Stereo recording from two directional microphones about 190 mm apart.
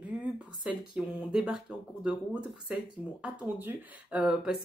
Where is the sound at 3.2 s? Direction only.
10° right (ahead or behind).